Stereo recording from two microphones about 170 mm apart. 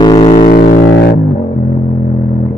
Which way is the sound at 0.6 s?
65° left (ahead or behind).